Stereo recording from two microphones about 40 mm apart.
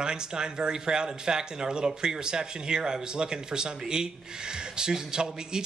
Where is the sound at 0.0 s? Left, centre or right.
Right.